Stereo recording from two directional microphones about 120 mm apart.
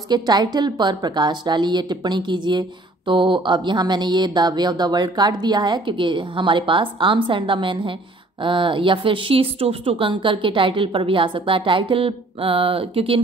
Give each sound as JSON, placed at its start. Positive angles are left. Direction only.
{"t": 0.1, "sound": "a woman's voice", "side_deg": -35}